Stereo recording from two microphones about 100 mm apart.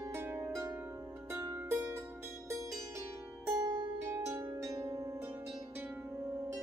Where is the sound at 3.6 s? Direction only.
45° right (ahead or behind).